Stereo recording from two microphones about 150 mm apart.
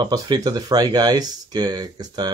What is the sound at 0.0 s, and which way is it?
Speech, 25° right (ahead or behind).